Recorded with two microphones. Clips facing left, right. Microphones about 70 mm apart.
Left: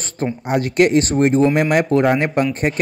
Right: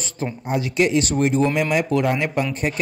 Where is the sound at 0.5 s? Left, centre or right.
Left.